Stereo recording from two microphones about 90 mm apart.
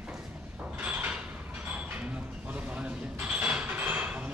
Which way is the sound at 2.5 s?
15° right (ahead or behind).